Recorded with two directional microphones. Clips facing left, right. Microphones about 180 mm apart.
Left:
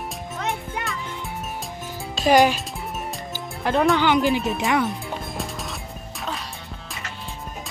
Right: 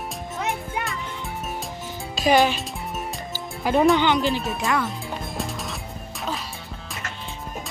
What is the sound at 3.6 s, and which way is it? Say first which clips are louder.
Speech: right 2 dB; 10° right (ahead or behind).